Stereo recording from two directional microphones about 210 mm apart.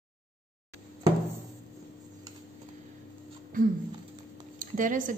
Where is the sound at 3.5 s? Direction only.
40° right (ahead or behind).